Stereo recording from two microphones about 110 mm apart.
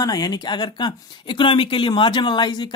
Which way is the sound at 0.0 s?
35° left (ahead or behind).